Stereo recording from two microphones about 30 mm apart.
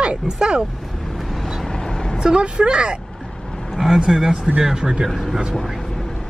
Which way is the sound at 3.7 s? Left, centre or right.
Centre.